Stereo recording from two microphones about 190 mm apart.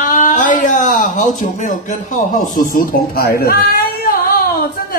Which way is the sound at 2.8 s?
55° left (ahead or behind).